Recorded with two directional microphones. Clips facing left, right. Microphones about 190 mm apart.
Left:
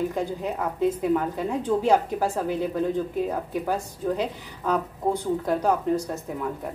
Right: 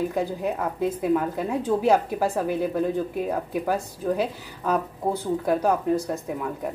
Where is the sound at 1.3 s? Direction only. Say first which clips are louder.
Even; 10° right (ahead or behind).